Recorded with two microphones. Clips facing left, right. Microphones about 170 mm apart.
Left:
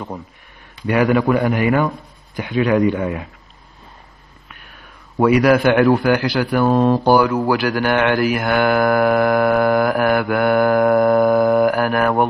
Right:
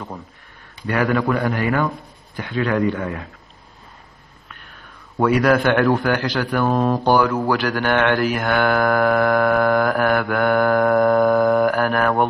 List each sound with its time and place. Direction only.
0.8 s speech: 15° left (ahead or behind)
5.1 s speech: 10° left (ahead or behind)